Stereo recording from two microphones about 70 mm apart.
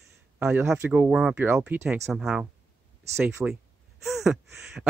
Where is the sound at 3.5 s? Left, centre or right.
Centre.